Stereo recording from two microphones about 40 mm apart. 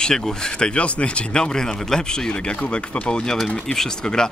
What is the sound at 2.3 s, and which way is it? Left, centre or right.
Speech, left.